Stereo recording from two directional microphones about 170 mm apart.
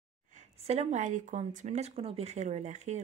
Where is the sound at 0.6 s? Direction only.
40° right (ahead or behind).